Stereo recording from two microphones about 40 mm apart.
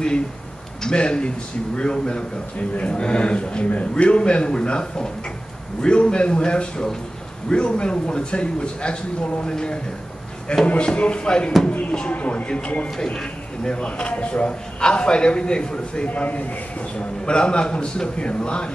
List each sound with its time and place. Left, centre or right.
0.8 s a man's voice: left
10.8 s a man's voice: left
12.1 s a man's voice: left
12.9 s a man's voice: centre
16.1 s speech: left
17.3 s a man's voice: left